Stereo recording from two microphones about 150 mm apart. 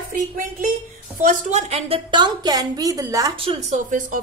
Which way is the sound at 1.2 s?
55° right (ahead or behind).